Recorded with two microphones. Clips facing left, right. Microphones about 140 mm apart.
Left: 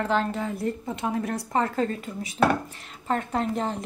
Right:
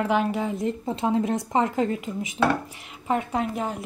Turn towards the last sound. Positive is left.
turn(degrees=-10)  # may be behind; listen again after turning